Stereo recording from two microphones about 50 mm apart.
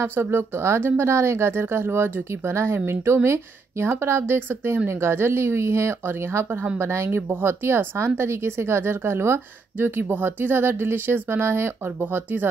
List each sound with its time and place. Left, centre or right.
0.0 s speech: right
2.4 s speech: right
7.1 s speech: right
9.8 s speech: right
12.0 s speech: right